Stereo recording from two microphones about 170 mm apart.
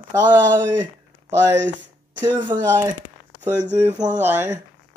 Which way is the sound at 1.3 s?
15° right (ahead or behind).